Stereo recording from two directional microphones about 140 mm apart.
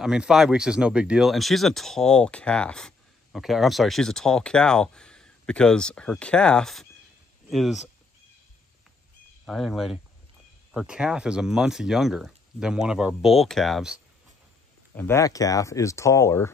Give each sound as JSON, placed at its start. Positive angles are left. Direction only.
{"t": 0.0, "sound": "speech", "side_deg": -5}
{"t": 9.5, "sound": "speech", "side_deg": 0}
{"t": 15.0, "sound": "speech", "side_deg": 20}